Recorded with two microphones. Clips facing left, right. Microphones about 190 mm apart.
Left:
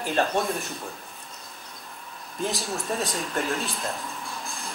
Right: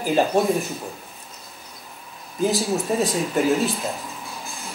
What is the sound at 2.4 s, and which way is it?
Speech, centre (ahead or behind).